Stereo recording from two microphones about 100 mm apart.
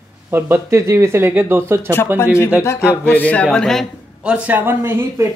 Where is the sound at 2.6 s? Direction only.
25° left (ahead or behind).